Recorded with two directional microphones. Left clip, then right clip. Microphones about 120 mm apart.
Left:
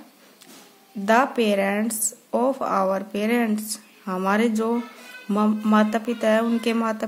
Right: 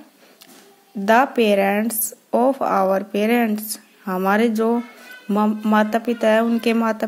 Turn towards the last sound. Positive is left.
turn(degrees=-35)  # may be behind; listen again after turning